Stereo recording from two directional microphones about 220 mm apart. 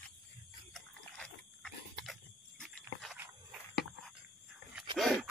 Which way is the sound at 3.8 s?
Centre (ahead or behind).